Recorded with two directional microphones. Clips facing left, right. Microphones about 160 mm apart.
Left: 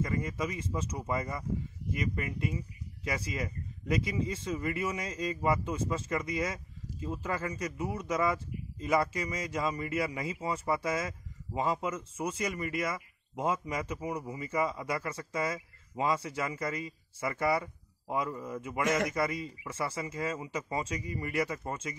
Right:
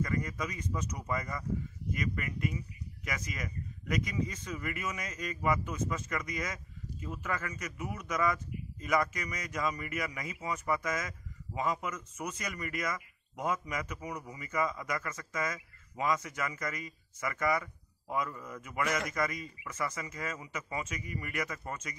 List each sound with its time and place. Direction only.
0.0 s speech: 25° left (ahead or behind)